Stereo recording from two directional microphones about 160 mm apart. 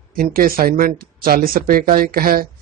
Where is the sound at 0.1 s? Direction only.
65° right (ahead or behind).